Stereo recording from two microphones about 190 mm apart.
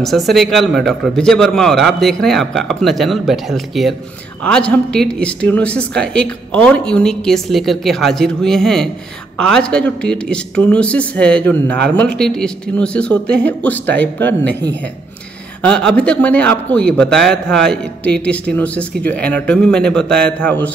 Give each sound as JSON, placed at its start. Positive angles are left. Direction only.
{"t": 0.0, "sound": "a man's voice", "side_deg": 0}
{"t": 15.6, "sound": "a man's voice", "side_deg": 5}